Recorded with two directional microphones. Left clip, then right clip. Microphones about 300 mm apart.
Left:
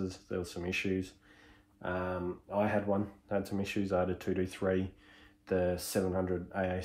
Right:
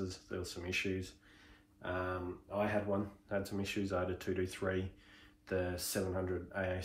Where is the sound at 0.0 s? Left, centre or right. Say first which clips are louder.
Left 5 dB; left.